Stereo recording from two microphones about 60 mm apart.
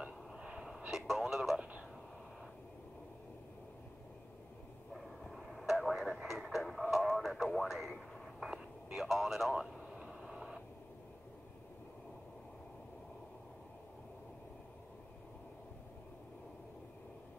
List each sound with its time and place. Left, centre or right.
0.3 s radio: centre
5.3 s radio: centre